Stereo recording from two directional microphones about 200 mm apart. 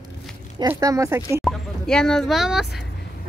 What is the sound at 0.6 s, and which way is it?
Speech, 15° right (ahead or behind).